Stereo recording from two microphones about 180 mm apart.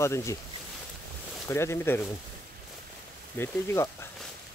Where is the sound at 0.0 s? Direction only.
15° left (ahead or behind).